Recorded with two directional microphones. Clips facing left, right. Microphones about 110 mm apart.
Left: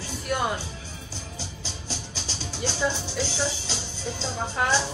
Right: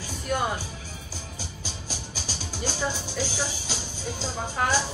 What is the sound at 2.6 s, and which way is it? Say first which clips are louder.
Speech: left 3 dB; 10° right (ahead or behind).